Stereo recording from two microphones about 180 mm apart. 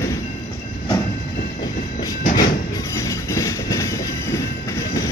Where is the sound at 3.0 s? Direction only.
20° left (ahead or behind).